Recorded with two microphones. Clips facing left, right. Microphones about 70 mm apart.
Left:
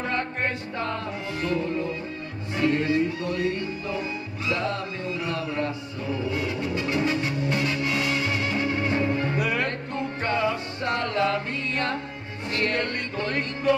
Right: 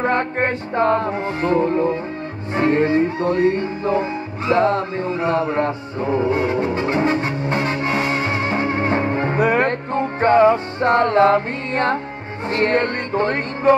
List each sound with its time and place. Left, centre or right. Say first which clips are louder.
0.0 s music: right 8 dB; right